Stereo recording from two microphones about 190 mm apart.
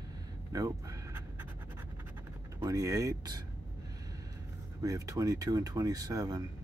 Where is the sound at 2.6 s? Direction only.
15° right (ahead or behind).